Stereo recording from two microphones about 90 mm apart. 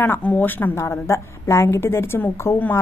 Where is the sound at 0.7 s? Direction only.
30° left (ahead or behind).